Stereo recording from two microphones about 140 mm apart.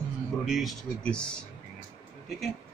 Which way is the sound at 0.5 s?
Centre (ahead or behind).